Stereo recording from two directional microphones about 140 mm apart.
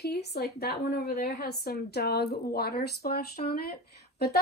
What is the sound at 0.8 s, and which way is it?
A woman's voice, 90° left.